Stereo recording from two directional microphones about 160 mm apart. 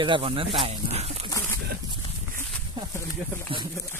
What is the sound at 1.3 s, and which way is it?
Bird, 15° left (ahead or behind).